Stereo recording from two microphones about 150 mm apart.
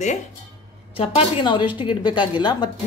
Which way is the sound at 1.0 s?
35° left (ahead or behind).